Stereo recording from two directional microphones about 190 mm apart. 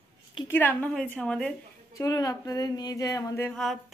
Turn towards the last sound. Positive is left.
turn(degrees=15)  # may be behind; listen again after turning